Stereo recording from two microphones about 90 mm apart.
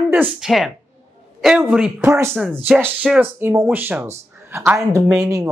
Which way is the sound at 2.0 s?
30° right (ahead or behind).